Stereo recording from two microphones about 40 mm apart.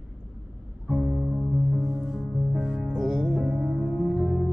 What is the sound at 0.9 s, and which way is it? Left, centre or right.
Music, centre.